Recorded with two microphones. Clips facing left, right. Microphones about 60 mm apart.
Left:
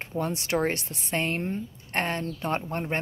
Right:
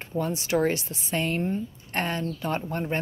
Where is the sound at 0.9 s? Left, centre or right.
Left.